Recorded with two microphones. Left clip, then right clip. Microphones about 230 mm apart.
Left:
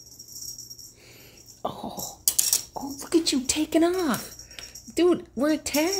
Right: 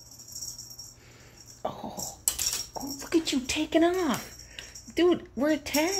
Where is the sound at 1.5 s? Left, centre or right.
Left.